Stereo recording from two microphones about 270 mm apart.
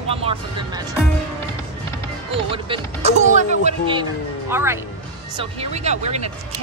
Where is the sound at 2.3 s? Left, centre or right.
Centre.